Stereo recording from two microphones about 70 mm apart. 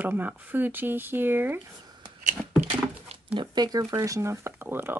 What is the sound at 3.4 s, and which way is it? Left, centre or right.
Speech, right.